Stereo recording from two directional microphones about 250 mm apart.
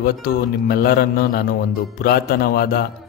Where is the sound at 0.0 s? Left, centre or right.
Left.